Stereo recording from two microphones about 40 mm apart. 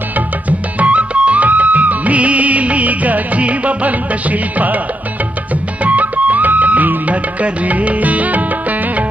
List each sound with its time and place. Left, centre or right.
0.5 s music: right
5.9 s music: right